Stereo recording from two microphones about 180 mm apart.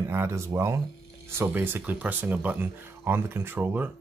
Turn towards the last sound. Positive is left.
turn(degrees=-10)  # may be behind; listen again after turning